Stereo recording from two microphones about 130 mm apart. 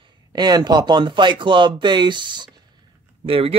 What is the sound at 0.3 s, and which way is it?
Speech, 30° right (ahead or behind).